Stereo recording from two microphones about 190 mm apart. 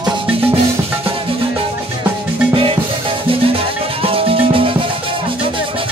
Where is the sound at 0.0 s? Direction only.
25° right (ahead or behind).